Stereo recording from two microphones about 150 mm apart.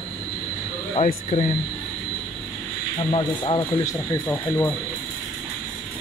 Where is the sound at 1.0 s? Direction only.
45° left (ahead or behind).